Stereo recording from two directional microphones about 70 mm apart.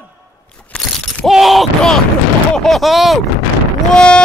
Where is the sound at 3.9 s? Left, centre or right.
Centre.